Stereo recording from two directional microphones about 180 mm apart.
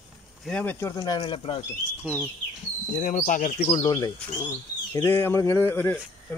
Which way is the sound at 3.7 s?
25° left (ahead or behind).